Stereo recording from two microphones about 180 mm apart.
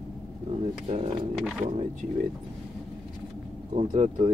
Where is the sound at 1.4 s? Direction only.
5° right (ahead or behind).